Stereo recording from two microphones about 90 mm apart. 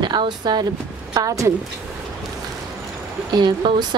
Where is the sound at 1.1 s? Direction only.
40° right (ahead or behind).